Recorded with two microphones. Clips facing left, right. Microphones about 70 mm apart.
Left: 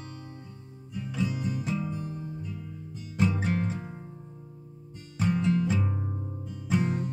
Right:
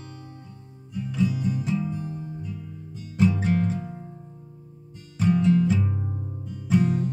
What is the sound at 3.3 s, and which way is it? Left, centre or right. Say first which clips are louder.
Music: right 5 dB; centre.